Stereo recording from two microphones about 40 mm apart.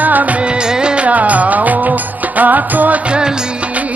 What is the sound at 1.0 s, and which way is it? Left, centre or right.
Music, right.